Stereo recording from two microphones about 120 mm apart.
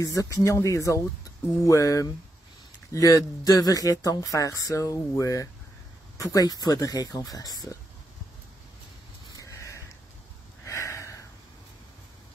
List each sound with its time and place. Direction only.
0.0 s speech: 30° left (ahead or behind)
9.3 s sniff: 25° left (ahead or behind)
10.6 s a sound: 25° left (ahead or behind)